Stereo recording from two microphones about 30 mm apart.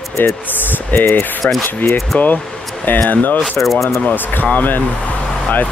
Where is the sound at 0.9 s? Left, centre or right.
Left.